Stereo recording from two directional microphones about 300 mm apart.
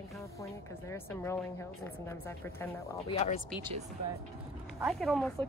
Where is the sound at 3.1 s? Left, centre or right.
Left.